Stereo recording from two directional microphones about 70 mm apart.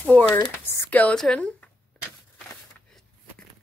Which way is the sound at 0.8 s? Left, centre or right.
Left.